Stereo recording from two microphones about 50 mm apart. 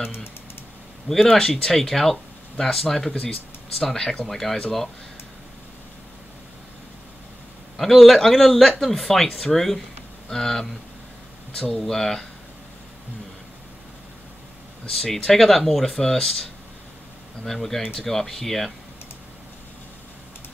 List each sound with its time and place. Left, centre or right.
1.3 s a man's voice: centre
7.7 s a man's voice: centre
11.8 s speech: centre
15.0 s a man's voice: centre
17.5 s a man's voice: centre